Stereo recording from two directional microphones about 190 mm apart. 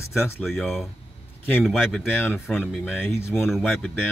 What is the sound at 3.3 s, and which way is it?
Speech, centre (ahead or behind).